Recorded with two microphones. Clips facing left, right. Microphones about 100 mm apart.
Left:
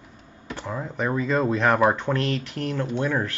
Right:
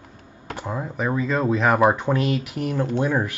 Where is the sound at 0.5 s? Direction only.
15° right (ahead or behind).